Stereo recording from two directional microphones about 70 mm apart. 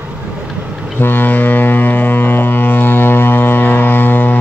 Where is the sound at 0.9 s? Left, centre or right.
Left.